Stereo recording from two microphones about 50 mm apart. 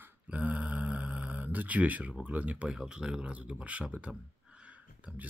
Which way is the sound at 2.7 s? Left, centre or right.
Centre.